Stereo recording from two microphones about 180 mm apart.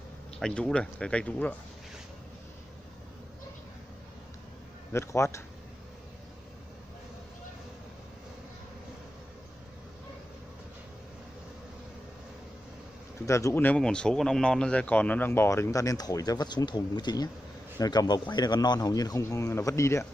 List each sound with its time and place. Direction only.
0.4 s speech: 5° left (ahead or behind)
4.9 s speech: 15° left (ahead or behind)
13.2 s speech: 15° left (ahead or behind)